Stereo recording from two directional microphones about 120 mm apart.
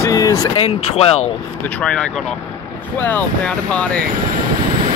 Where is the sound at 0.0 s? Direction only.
30° left (ahead or behind).